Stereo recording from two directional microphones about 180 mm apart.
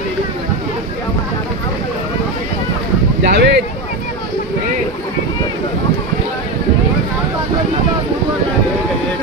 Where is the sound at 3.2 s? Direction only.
70° right (ahead or behind).